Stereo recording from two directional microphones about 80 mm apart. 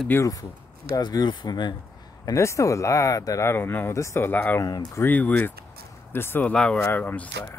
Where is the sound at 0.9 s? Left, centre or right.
Left.